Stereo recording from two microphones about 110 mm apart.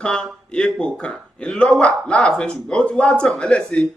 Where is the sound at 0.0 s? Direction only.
5° left (ahead or behind).